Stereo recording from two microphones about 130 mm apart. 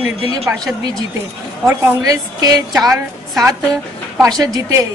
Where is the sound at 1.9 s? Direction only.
25° right (ahead or behind).